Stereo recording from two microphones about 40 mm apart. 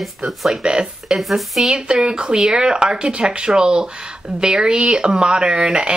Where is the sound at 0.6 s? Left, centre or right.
Right.